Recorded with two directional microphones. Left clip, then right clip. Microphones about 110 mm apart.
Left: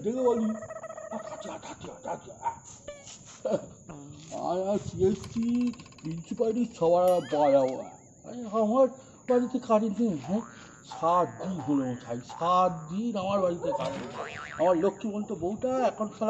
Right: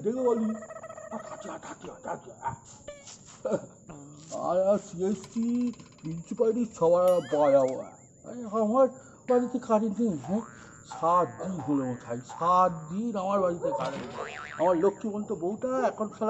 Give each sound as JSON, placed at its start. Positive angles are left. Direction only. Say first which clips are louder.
{"t": 0.0, "sound": "speech", "louder": "even", "side_deg": 0}
{"t": 4.4, "sound": "speech", "louder": "right 4 dB", "side_deg": -15}
{"t": 6.2, "sound": "speech", "louder": "right 2 dB", "side_deg": -10}